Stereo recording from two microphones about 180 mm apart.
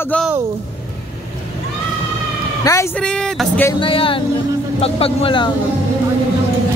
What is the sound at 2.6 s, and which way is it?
Speech, 20° left (ahead or behind).